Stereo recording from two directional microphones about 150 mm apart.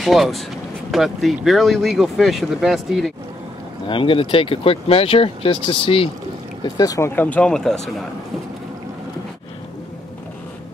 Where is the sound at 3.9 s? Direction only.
35° left (ahead or behind).